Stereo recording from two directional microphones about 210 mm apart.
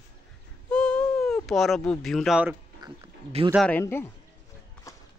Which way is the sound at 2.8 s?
25° right (ahead or behind).